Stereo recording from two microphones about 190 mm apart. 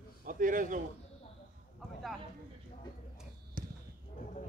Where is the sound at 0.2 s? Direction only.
45° right (ahead or behind).